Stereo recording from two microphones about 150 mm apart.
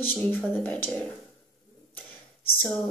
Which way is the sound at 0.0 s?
10° left (ahead or behind).